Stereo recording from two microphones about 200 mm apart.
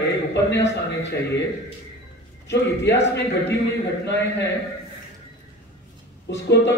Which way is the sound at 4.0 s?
60° left (ahead or behind).